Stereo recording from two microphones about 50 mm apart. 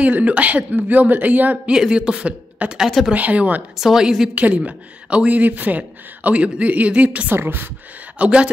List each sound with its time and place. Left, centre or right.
0.0 s speech: right
1.7 s speech: centre
3.7 s a woman's voice: centre
4.4 s speech: right
7.3 s speech: right
8.2 s speech: right